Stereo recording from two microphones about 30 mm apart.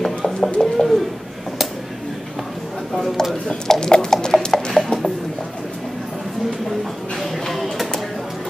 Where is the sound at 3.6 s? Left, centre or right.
Centre.